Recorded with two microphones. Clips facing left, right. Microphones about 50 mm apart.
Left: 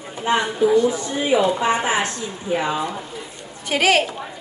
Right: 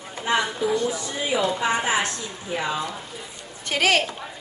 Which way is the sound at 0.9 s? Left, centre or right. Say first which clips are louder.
Left 6 dB; left.